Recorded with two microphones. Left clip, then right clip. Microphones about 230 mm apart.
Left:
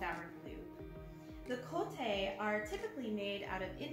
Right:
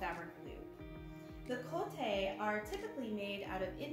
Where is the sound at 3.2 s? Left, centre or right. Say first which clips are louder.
Left 1 dB; centre.